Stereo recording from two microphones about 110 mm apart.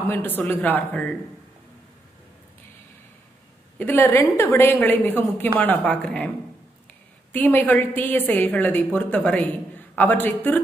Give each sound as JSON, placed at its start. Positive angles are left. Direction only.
{"t": 0.4, "sound": "a woman's voice", "side_deg": 15}
{"t": 3.7, "sound": "a woman's voice", "side_deg": 20}
{"t": 7.3, "sound": "a woman's voice", "side_deg": 15}